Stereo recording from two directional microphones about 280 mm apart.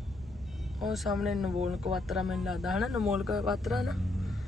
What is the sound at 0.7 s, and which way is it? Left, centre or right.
Speech, centre.